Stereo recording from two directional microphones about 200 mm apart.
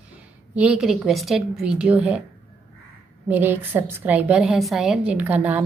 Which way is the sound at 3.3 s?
10° right (ahead or behind).